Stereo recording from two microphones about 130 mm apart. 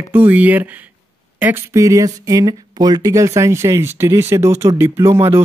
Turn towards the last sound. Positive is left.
turn(degrees=-20)  # may be behind; listen again after turning